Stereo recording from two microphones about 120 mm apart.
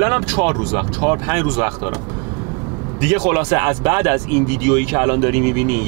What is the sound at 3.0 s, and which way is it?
Speech, 20° right (ahead or behind).